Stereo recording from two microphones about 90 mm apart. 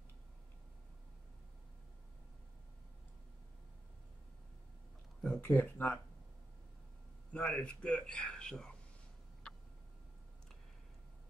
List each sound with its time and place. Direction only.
5.2 s speech: 20° left (ahead or behind)
7.3 s a man's voice: 10° left (ahead or behind)